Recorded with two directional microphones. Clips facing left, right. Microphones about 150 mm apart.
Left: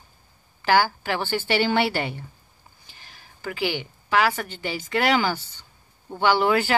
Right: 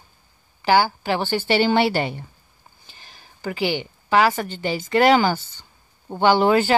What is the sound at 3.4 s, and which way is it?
Speech, 25° right (ahead or behind).